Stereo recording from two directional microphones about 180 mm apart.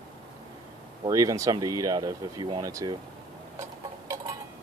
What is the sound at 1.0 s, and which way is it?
Speech, 20° right (ahead or behind).